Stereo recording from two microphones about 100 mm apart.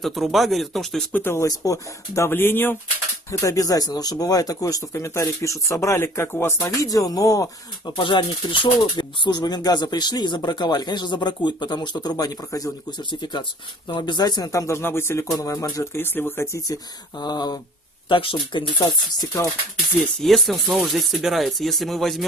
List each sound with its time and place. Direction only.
0.0 s speech: centre (ahead or behind)
1.1 s speech: 25° left (ahead or behind)
3.3 s speech: 30° left (ahead or behind)
6.6 s speech: 35° left (ahead or behind)
7.9 s speech: 55° left (ahead or behind); by 12.7 s 35° left (ahead or behind)
13.1 s speech: 50° left (ahead or behind); by 15.2 s 25° left (ahead or behind)
15.3 s speech: 35° left (ahead or behind)
16.6 s speech: 40° left (ahead or behind)
18.0 s speech: 55° left (ahead or behind)
20.2 s speech: centre (ahead or behind)